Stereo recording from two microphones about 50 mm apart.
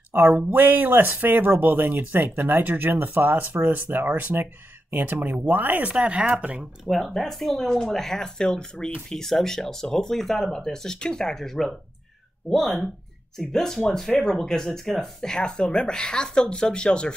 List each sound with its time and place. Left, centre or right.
0.1 s speech: right
5.9 s speech: right
6.6 s speech: centre